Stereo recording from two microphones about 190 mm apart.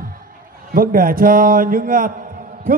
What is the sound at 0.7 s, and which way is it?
Speech, 50° right (ahead or behind).